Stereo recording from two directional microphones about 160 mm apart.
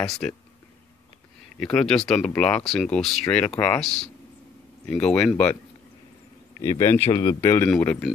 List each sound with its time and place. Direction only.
0.0 s speech: 5° left (ahead or behind)
1.6 s speech: 5° left (ahead or behind)
6.6 s speech: 15° left (ahead or behind)
7.1 s speech: 25° left (ahead or behind)
7.4 s speech: 15° left (ahead or behind)